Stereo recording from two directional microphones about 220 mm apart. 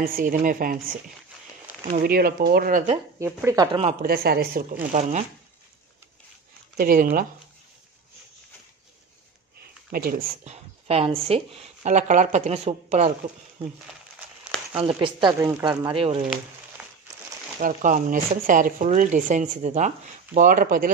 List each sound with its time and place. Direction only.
0.0 s speech: 40° right (ahead or behind)
2.0 s speech: 45° right (ahead or behind)
3.2 s speech: 10° right (ahead or behind)
4.0 s speech: 45° right (ahead or behind)
6.8 s speech: 40° right (ahead or behind)
9.8 s speech: 40° right (ahead or behind)
14.4 s a sound: 5° right (ahead or behind)
14.9 s speech: 20° right (ahead or behind)
16.8 s a sound: 10° right (ahead or behind)
17.6 s speech: 35° right (ahead or behind)